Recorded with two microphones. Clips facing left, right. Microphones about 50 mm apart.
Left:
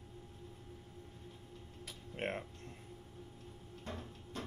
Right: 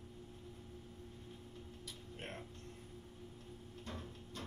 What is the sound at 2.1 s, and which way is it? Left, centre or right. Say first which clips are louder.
Speech: left 10 dB; left.